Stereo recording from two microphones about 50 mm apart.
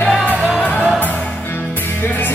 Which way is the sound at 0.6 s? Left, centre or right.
Left.